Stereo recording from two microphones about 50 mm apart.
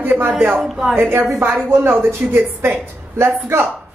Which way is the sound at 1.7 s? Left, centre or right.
Right.